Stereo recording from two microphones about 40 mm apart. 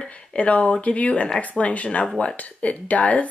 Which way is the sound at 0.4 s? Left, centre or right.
Left.